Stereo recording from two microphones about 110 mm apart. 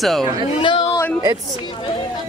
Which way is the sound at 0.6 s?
45° left (ahead or behind).